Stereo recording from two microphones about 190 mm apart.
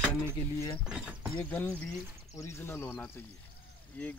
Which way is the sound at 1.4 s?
10° left (ahead or behind).